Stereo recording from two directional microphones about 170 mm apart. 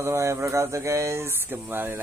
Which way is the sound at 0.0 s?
15° right (ahead or behind).